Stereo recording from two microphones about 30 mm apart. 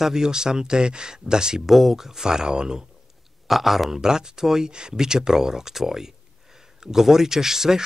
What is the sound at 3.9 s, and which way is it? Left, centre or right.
Speech, right.